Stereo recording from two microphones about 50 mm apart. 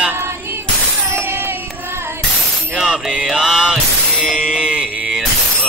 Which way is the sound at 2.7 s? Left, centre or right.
Centre.